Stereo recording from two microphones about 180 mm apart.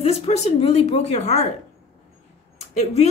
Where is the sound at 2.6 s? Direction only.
35° left (ahead or behind).